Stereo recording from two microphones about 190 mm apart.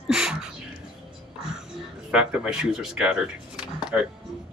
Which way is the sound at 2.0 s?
5° right (ahead or behind).